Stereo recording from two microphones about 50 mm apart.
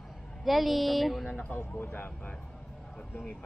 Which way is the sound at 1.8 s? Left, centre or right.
Left.